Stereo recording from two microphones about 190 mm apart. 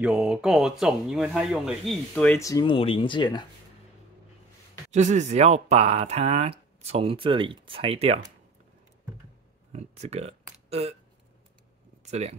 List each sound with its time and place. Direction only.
0.0 s speech: 5° right (ahead or behind)
2.4 s speech: 20° left (ahead or behind)
4.9 s speech: 40° right (ahead or behind)
9.7 s speech: 35° right (ahead or behind)
12.0 s speech: 35° right (ahead or behind)